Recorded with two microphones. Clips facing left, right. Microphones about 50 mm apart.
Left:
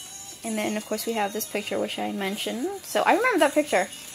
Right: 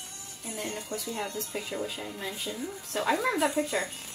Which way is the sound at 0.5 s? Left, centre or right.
Left.